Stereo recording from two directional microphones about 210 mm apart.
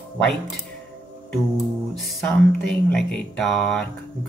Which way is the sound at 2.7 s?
5° left (ahead or behind).